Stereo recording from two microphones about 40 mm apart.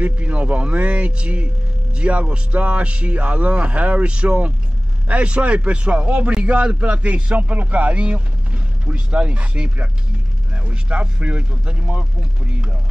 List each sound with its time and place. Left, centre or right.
0.0 s a man's voice: right